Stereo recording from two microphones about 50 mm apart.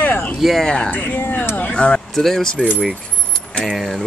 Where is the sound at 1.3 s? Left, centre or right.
Left.